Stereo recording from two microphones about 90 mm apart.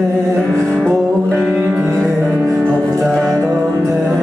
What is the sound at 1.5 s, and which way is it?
Music, 5° right (ahead or behind).